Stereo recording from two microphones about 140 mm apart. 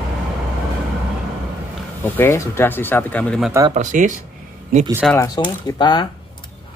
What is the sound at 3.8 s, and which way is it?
Speech, 65° right (ahead or behind).